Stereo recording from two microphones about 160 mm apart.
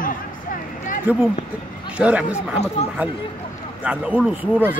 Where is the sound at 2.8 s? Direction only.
40° left (ahead or behind).